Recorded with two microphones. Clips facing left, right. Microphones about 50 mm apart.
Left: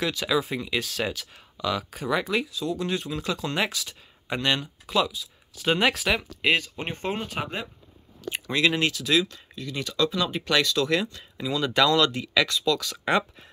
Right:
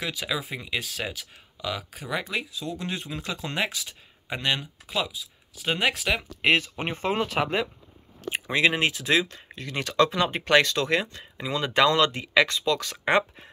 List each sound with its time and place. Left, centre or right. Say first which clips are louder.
0.0 s speech: left 5 dB; centre
2.5 s speech: left 4 dB; right
5.7 s speech: left 2 dB; centre
6.9 s speech: right 4 dB; right
8.3 s speech: right 1 dB; right
9.6 s speech: right 3 dB; right
10.9 s speech: even; right